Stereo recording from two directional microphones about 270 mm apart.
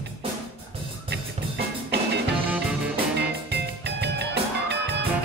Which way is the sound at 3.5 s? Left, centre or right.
Right.